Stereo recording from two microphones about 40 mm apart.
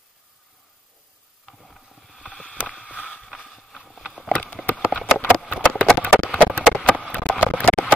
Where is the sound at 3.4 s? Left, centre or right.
Centre.